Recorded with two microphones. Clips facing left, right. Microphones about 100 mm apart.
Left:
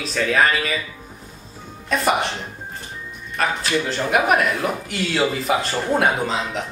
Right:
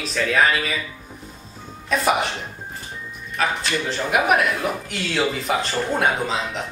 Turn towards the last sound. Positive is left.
turn(degrees=0)  # may be behind; listen again after turning